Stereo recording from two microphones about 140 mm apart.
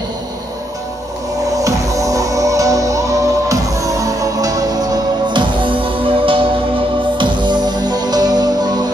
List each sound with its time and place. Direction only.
1.6 s music: 25° right (ahead or behind)